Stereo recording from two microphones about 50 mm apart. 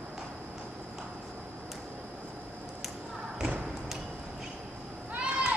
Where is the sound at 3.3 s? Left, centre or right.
Right.